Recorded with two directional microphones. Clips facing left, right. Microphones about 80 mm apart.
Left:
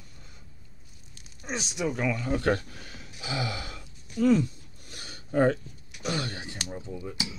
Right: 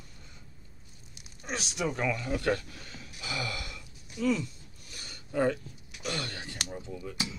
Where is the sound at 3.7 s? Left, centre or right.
Left.